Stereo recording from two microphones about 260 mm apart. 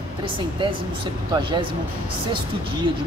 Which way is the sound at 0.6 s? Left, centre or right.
Centre.